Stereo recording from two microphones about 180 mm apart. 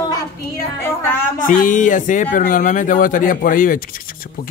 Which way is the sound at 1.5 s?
45° left (ahead or behind).